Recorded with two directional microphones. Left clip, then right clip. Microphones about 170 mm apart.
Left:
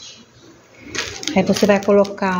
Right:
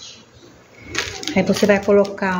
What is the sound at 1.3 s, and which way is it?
Speech, 20° left (ahead or behind).